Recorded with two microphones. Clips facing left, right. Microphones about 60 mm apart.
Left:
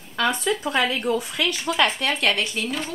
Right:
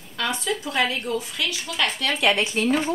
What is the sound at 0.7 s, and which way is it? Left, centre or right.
Speech, left.